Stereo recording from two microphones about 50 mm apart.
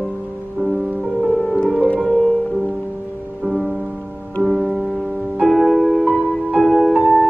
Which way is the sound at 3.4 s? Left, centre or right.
Centre.